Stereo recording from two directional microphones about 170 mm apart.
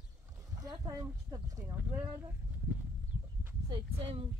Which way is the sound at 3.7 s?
30° right (ahead or behind).